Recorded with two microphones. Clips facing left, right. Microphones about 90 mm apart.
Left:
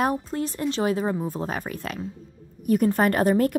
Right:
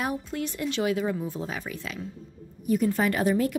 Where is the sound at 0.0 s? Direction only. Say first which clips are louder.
Left 5 dB; 40° left (ahead or behind).